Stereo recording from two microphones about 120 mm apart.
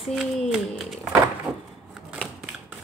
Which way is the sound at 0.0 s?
Centre (ahead or behind).